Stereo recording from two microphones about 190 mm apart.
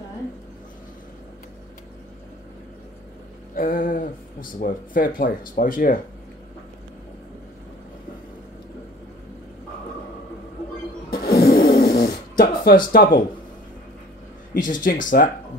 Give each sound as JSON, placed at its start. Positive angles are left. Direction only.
{"t": 3.5, "sound": "speech", "side_deg": 45}
{"t": 11.1, "sound": "snoring", "side_deg": 55}
{"t": 14.5, "sound": "speech", "side_deg": 45}